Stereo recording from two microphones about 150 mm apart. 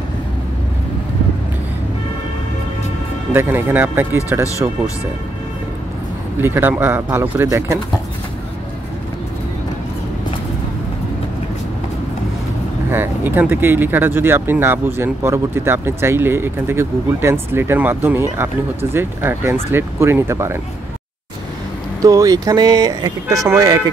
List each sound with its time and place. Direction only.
3.3 s speech: 15° right (ahead or behind)
6.4 s speech: 15° right (ahead or behind)
12.9 s speech: 15° right (ahead or behind)
22.0 s speech: 25° right (ahead or behind)